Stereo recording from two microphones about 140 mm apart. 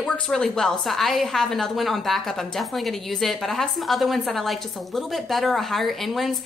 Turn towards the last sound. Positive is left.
turn(degrees=0)  # may be behind; listen again after turning